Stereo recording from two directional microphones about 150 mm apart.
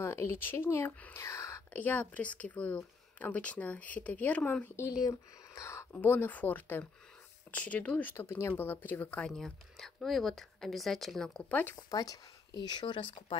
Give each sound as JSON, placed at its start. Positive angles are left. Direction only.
{"t": 0.0, "sound": "speech", "side_deg": 15}
{"t": 11.9, "sound": "speech", "side_deg": 25}